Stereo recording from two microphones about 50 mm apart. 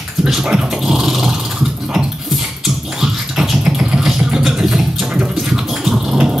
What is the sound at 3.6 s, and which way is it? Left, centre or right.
Vehicle, centre.